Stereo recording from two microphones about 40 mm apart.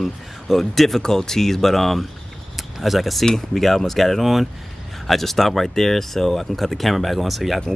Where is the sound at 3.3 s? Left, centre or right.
Centre.